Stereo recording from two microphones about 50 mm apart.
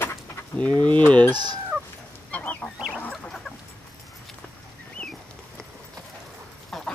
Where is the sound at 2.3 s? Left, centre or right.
Left.